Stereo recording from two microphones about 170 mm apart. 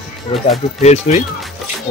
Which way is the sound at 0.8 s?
40° left (ahead or behind).